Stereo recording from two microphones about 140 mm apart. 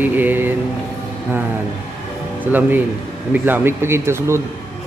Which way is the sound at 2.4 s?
15° right (ahead or behind).